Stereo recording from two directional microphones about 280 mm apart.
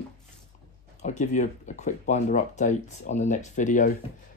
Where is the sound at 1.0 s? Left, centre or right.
Left.